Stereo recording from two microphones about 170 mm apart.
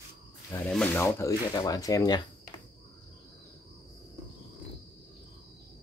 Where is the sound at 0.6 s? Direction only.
5° left (ahead or behind).